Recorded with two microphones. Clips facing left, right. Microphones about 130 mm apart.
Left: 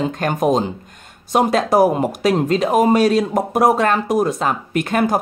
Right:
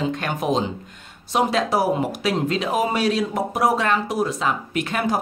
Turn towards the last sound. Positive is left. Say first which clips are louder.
# left 5 dB
turn(degrees=50)  # may be behind; listen again after turning